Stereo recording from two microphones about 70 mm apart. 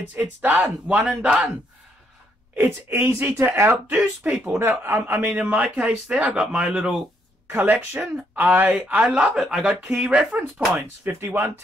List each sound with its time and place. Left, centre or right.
0.4 s speech: right
2.5 s a man's voice: right
4.2 s a man's voice: right
4.6 s a man's voice: right; by 7.1 s centre
7.4 s a man's voice: right
9.0 s speech: centre
11.1 s speech: right